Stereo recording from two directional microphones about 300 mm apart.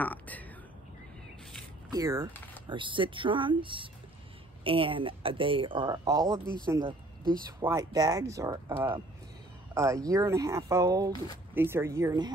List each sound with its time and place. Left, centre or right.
0.0 s speech: centre
1.9 s speech: centre